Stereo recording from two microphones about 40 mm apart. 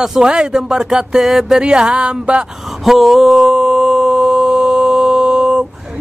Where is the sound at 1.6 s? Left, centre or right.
Right.